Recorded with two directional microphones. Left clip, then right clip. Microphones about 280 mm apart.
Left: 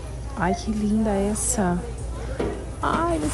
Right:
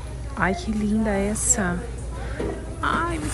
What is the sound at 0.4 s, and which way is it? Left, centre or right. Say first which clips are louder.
Speech: right 1 dB; centre.